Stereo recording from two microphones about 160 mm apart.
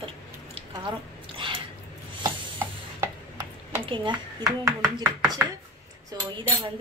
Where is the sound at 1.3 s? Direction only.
30° right (ahead or behind).